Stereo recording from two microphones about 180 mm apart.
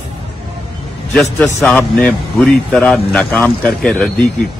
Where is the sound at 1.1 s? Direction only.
10° left (ahead or behind).